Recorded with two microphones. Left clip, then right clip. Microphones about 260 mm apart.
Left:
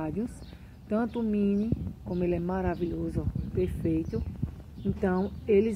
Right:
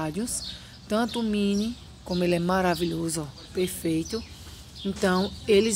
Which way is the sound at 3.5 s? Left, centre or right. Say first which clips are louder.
Right 2 dB; right.